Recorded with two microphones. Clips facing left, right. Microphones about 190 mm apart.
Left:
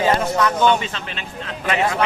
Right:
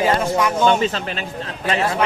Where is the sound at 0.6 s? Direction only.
45° right (ahead or behind).